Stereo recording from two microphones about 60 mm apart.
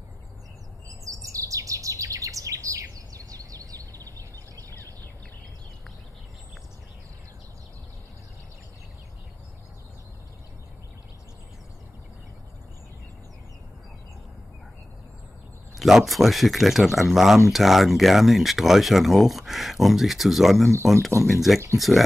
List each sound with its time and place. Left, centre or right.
0.8 s chirp: right
15.8 s speech: centre
20.7 s speech: right
21.2 s speech: centre